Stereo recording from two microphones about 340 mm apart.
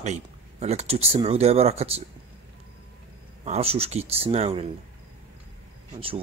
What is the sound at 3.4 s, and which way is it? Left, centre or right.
A man's voice, centre.